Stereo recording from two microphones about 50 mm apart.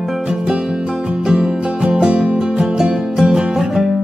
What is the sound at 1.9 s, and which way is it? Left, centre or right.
Music, centre.